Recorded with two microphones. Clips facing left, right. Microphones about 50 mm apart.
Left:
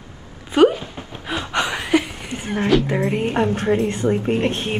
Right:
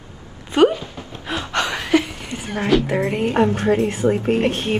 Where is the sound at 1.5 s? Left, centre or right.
Centre.